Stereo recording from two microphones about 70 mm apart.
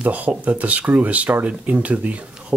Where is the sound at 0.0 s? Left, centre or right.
Centre.